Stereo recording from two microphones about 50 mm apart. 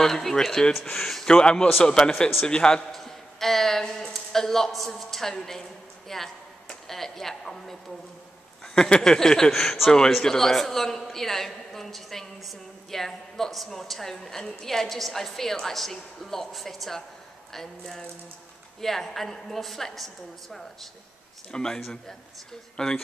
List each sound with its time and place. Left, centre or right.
0.0 s a woman's voice: centre
1.2 s a man's voice: centre
2.9 s a woman's voice: centre
8.7 s a woman's voice: centre
21.5 s a woman's voice: centre